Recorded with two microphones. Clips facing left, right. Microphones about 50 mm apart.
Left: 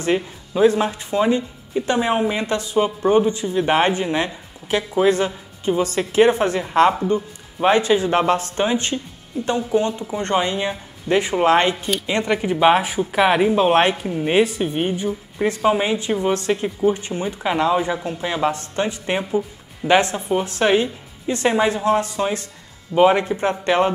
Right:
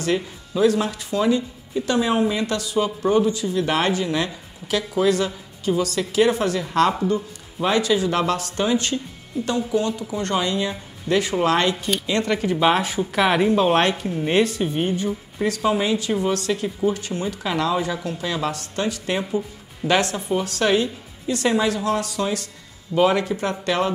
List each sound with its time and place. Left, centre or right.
0.0 s speech: left